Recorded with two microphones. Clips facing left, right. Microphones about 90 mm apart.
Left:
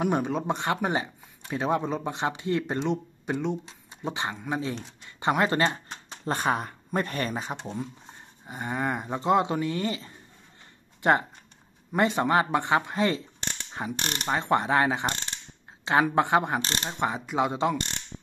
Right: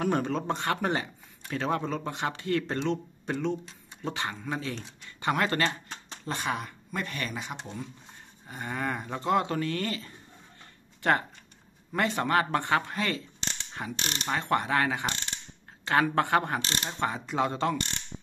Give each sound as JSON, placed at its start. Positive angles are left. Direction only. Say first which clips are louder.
{"t": 0.0, "sound": "speech", "louder": "left 2 dB", "side_deg": 10}
{"t": 6.2, "sound": "speech", "louder": "left 5 dB", "side_deg": 40}
{"t": 7.6, "sound": "speech", "louder": "left 5 dB", "side_deg": 25}
{"t": 13.9, "sound": "mechanisms", "louder": "left 2 dB", "side_deg": 55}
{"t": 14.2, "sound": "speech", "louder": "left 3 dB", "side_deg": 25}
{"t": 16.6, "sound": "speech", "louder": "left 2 dB", "side_deg": 35}
{"t": 17.4, "sound": "speech", "louder": "left 2 dB", "side_deg": 15}